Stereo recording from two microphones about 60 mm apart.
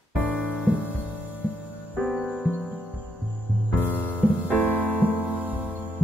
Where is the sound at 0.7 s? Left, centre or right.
Right.